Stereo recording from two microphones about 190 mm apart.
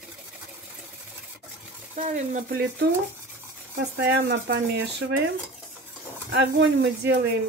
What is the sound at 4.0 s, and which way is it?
Speech, 65° right (ahead or behind).